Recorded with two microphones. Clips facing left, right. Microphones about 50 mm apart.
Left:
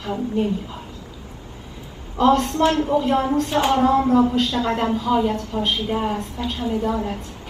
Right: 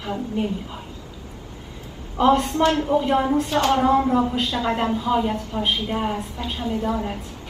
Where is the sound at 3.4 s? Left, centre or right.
Centre.